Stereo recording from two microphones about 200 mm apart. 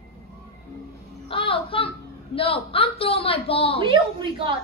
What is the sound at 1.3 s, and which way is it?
A woman's voice, 25° left (ahead or behind).